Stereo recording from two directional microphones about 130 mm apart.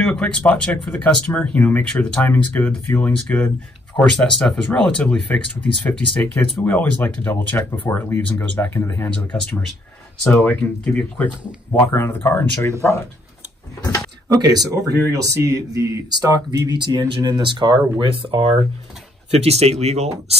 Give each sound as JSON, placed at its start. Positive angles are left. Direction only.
{"t": 0.0, "sound": "speech", "side_deg": 5}
{"t": 10.3, "sound": "speech", "side_deg": 15}
{"t": 14.3, "sound": "speech", "side_deg": -30}
{"t": 19.3, "sound": "speech", "side_deg": -55}